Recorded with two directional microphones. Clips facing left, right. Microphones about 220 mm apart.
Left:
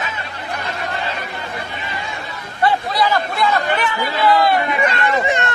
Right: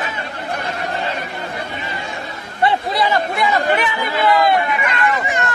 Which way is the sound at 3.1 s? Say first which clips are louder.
Even; 20° right (ahead or behind).